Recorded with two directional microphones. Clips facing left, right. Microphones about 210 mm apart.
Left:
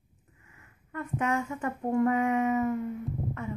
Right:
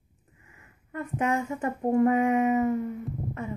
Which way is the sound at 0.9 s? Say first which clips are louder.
Right 2 dB; 25° right (ahead or behind).